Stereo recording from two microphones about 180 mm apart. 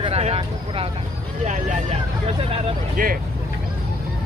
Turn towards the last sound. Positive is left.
turn(degrees=-50)  # may be behind; listen again after turning